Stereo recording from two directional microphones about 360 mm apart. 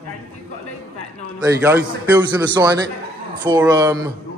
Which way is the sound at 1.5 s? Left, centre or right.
Centre.